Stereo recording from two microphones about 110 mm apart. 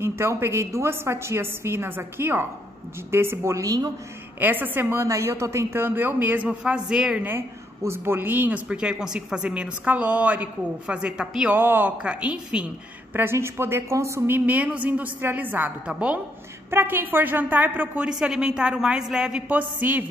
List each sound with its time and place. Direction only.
0.0 s a woman's voice: 20° right (ahead or behind)
4.4 s speech: 15° right (ahead or behind)
7.2 s speech: 20° right (ahead or behind)
13.1 s speech: 20° right (ahead or behind)